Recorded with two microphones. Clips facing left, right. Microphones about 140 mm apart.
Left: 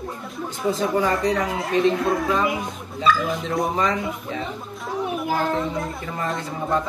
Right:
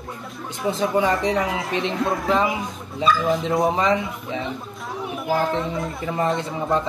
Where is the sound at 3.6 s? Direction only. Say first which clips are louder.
Right 1 dB; 25° right (ahead or behind).